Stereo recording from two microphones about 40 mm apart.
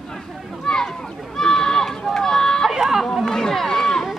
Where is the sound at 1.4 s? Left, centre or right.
Centre.